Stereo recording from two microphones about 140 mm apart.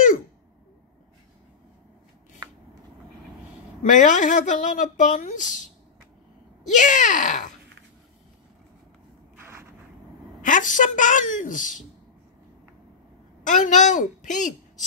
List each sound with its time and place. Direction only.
3.8 s speech: 65° left (ahead or behind)
6.7 s speech: 60° left (ahead or behind)
10.4 s a woman's voice: 65° left (ahead or behind)
13.4 s speech: 65° left (ahead or behind)